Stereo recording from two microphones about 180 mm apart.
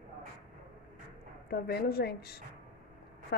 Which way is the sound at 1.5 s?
60° left (ahead or behind).